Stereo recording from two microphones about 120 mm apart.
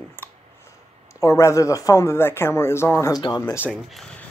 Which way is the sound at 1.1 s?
25° left (ahead or behind).